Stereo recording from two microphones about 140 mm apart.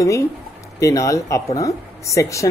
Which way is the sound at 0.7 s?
25° left (ahead or behind).